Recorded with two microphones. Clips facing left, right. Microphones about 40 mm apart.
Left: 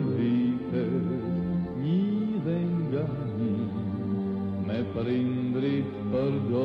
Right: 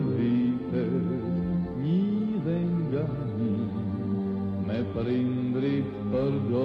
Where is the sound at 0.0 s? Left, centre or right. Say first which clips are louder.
Even; centre.